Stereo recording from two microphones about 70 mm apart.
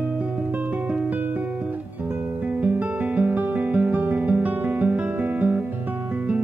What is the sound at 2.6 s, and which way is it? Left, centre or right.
Music, right.